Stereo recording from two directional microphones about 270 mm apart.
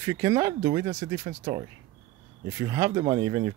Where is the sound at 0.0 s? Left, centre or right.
Centre.